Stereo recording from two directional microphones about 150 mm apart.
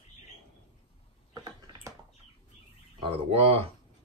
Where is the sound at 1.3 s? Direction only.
25° right (ahead or behind).